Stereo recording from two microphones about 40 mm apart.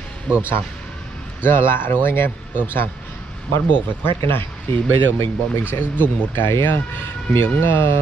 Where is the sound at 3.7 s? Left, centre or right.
Left.